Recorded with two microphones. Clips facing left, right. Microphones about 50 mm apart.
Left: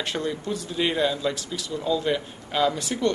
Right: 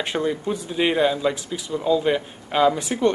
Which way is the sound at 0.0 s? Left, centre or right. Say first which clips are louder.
Right 4 dB; right.